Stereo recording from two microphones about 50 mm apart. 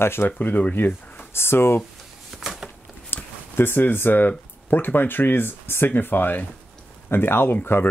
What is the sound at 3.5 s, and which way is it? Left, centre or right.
Speech, left.